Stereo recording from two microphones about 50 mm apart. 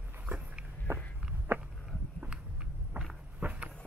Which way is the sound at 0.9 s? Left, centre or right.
Right.